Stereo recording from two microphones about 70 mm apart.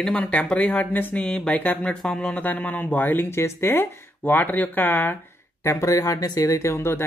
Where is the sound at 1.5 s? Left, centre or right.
Left.